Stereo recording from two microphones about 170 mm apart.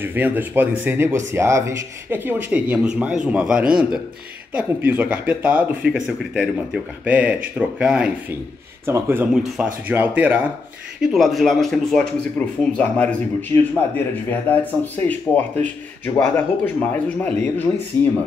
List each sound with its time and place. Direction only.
0.0 s speech: 10° right (ahead or behind); by 17.6 s 10° left (ahead or behind)